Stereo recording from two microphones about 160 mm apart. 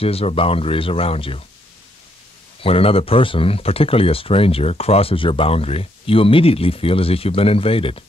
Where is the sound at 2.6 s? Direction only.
35° left (ahead or behind).